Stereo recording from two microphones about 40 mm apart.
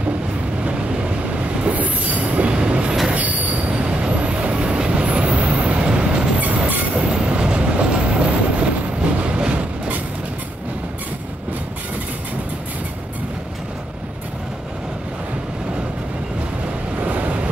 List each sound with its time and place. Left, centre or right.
1.6 s train: right
3.1 s train wheels squealing: right
3.7 s train: right
16.9 s vehicle: right